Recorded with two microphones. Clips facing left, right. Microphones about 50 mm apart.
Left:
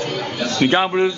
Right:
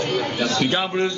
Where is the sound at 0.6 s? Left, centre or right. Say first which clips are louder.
Left 9 dB; left.